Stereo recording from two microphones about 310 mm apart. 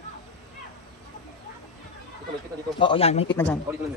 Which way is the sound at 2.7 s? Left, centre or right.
Centre.